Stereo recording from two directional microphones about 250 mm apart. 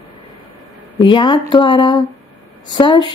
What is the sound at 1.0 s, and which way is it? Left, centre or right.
A woman's voice, centre.